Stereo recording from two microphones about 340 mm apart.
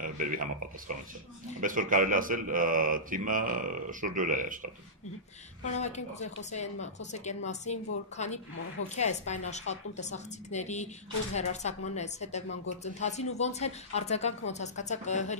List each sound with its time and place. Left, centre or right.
0.0 s speech: right
1.6 s speech: right
5.6 s a woman's voice: centre
11.9 s a woman's voice: centre